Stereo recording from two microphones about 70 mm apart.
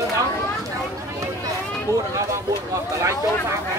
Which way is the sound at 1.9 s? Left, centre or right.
Right.